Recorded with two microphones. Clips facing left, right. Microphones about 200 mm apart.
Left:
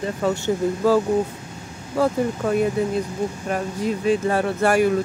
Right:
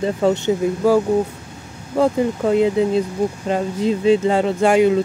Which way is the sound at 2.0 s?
20° right (ahead or behind).